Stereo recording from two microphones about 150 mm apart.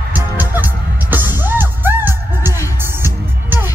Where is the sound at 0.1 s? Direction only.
10° right (ahead or behind).